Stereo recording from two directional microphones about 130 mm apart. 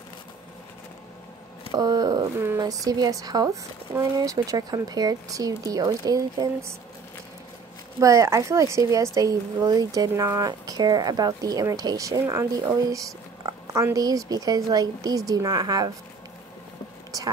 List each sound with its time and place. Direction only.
1.7 s speech: 30° right (ahead or behind)
8.0 s speech: 25° right (ahead or behind)